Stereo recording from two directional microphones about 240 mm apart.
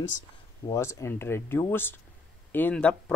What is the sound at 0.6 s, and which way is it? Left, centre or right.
Speech, centre.